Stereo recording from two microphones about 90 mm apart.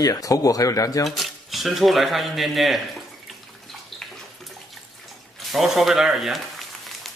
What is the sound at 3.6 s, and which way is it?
Bathtub, 5° left (ahead or behind).